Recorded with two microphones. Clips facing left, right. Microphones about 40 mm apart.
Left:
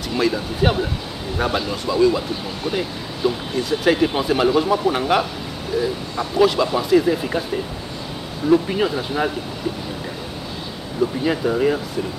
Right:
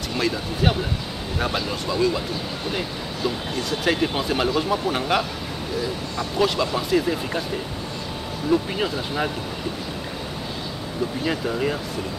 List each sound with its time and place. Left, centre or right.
0.2 s speech: centre
8.5 s speech: centre
11.2 s speech: centre